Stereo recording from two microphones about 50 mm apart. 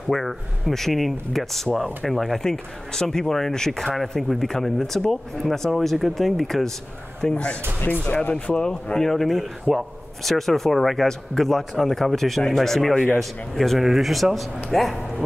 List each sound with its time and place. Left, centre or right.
0.1 s speech: centre
8.0 s speech: left
8.9 s speech: centre